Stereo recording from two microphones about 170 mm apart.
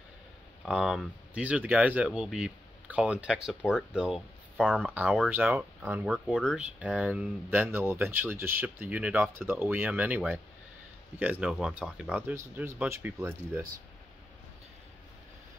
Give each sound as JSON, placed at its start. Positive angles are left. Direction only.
{"t": 0.7, "sound": "speech", "side_deg": -5}